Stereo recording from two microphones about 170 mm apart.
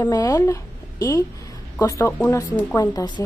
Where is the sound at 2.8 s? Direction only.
25° left (ahead or behind).